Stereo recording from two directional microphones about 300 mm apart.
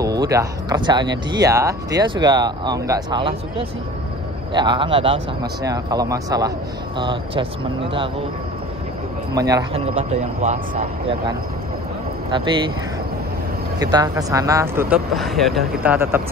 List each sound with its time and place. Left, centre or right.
0.0 s speech: centre
9.3 s speech: centre
13.7 s speech: centre